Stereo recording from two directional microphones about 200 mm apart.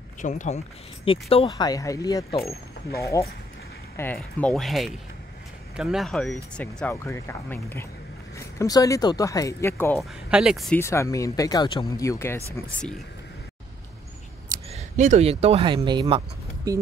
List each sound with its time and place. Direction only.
0.2 s speech: 40° left (ahead or behind)
1.0 s speech: 25° left (ahead or behind); by 9.9 s 10° left (ahead or behind)
9.9 s speech: centre (ahead or behind)
10.8 s speech: 15° left (ahead or behind)
14.7 s speech: 35° right (ahead or behind)